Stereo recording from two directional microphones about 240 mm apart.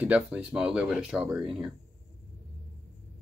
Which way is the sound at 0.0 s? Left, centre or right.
Centre.